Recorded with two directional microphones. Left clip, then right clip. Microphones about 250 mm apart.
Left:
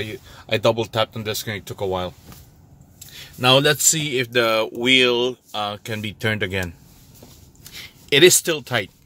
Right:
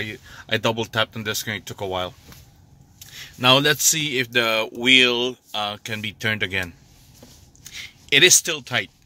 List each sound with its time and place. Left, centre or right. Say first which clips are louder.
0.0 s speech: even; centre
7.7 s speech: even; centre